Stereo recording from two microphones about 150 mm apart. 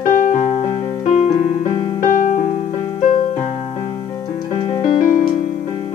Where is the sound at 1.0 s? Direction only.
50° left (ahead or behind).